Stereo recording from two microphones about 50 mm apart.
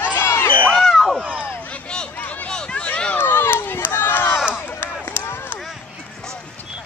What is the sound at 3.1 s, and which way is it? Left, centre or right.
Crowd, left.